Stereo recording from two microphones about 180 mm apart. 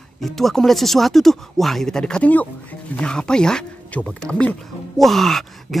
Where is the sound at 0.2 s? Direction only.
Centre (ahead or behind).